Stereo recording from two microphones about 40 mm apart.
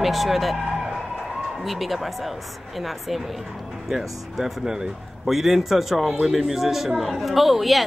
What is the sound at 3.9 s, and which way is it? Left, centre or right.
A woman's voice, centre.